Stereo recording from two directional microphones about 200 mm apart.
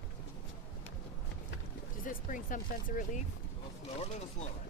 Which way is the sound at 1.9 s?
45° left (ahead or behind).